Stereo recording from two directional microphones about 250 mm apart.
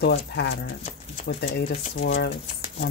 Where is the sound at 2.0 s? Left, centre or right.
Left.